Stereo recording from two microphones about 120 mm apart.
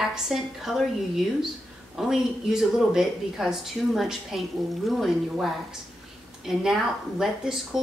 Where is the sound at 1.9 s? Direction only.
5° right (ahead or behind).